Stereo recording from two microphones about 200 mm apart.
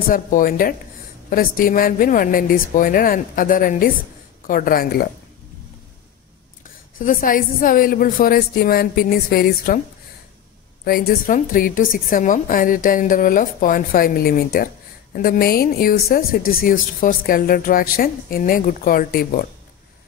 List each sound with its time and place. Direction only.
0.1 s speech: 45° left (ahead or behind)
7.0 s speech: 45° left (ahead or behind)
10.8 s speech: 45° left (ahead or behind)